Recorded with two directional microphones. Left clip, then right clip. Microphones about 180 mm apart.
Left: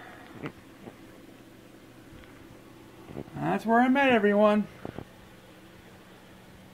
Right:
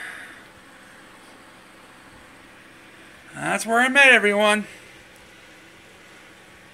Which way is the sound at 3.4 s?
20° right (ahead or behind).